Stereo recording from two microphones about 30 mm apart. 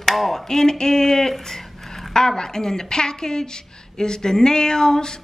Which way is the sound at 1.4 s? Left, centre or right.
Centre.